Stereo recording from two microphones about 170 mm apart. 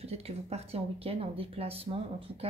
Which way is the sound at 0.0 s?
35° right (ahead or behind).